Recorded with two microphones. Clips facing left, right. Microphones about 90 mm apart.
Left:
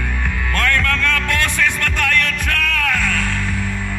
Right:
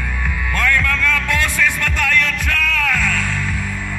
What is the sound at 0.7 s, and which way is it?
Music, 60° left (ahead or behind).